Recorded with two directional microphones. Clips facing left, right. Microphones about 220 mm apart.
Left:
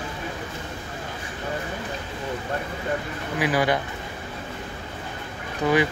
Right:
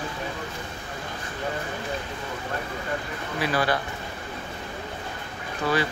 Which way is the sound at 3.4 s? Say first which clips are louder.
Left 3 dB; 15° left (ahead or behind).